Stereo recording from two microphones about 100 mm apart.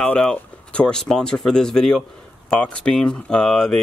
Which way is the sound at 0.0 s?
10° left (ahead or behind).